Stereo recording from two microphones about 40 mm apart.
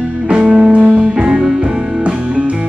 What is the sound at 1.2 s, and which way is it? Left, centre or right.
Music, centre.